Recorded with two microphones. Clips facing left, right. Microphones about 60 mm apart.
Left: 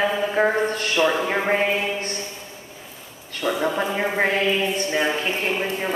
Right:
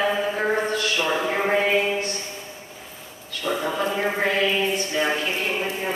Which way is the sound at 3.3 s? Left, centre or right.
Left.